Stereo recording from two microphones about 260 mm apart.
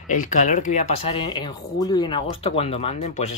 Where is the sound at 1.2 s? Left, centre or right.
Centre.